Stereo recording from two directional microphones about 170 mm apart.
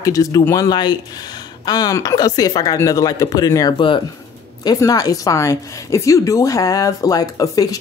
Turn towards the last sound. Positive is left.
turn(degrees=20)  # may be behind; listen again after turning